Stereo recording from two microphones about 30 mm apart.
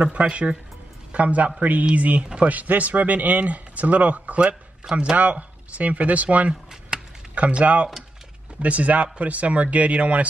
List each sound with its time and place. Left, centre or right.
0.0 s speech: right
4.9 s speech: centre
5.3 s speech: right